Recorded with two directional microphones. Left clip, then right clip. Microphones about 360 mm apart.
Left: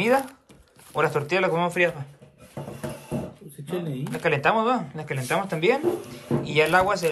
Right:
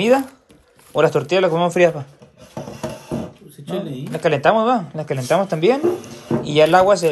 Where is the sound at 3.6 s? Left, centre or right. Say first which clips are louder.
Right 5 dB; centre.